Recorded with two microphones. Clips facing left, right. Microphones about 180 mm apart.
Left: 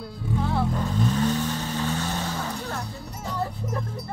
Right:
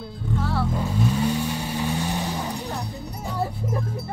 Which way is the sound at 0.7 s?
10° right (ahead or behind).